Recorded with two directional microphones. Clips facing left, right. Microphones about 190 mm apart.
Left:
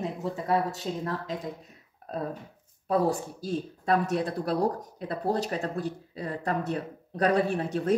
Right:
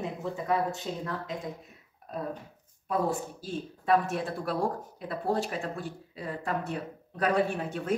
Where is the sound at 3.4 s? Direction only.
40° left (ahead or behind).